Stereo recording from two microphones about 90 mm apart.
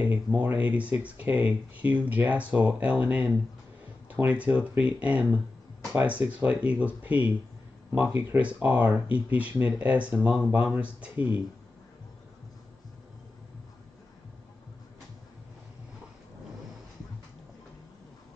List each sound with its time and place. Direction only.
0.4 s speech: 20° right (ahead or behind)